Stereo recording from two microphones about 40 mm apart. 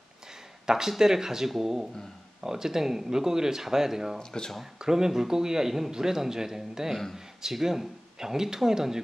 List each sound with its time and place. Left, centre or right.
0.7 s speech: centre
4.2 s speech: centre
4.7 s speech: centre